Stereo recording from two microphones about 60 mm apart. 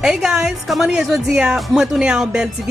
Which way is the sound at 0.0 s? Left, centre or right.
Centre.